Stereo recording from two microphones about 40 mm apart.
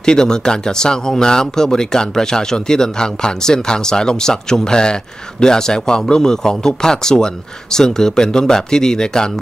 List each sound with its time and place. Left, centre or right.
0.0 s speech: centre